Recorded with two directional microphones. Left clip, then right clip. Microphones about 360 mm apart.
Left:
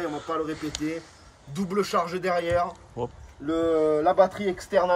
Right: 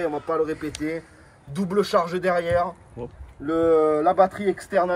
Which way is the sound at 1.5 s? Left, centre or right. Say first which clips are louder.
Right 4 dB; centre.